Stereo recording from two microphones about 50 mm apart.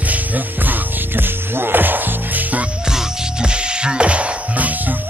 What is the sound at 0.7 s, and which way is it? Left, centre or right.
Music, right.